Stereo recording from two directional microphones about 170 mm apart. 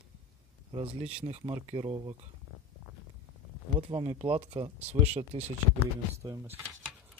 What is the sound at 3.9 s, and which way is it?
Speech, 35° right (ahead or behind).